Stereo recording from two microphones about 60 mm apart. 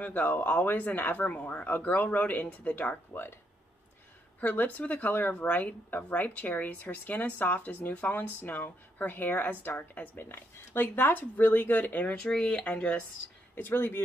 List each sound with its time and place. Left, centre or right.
0.0 s speech: left
3.1 s speech: left
4.4 s speech: left
13.6 s speech: left